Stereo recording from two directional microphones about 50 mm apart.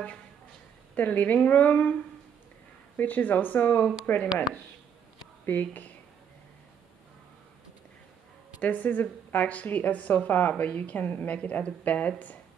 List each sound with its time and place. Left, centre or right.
0.9 s speech: left
3.0 s speech: left
5.4 s speech: left
8.5 s a woman's voice: left